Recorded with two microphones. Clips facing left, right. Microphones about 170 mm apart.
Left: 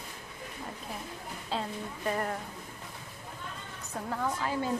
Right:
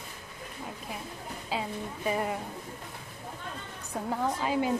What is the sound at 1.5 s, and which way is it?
Speech, 5° right (ahead or behind).